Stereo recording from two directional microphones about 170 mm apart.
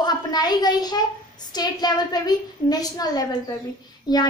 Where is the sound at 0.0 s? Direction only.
25° left (ahead or behind).